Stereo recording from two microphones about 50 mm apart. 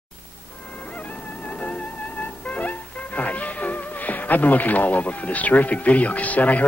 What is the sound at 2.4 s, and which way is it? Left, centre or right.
Music, left.